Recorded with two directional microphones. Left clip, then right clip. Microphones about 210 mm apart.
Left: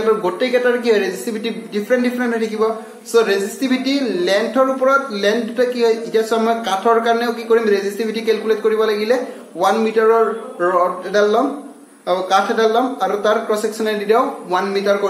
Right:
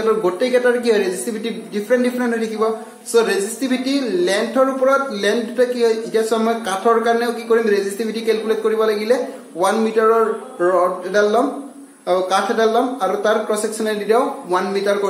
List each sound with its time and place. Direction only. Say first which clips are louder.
0.0 s a woman's voice: even; centre (ahead or behind)